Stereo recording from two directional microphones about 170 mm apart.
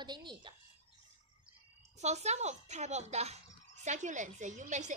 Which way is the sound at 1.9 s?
40° right (ahead or behind).